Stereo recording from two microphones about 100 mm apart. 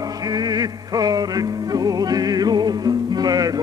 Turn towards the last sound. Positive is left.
turn(degrees=-40)  # may be behind; listen again after turning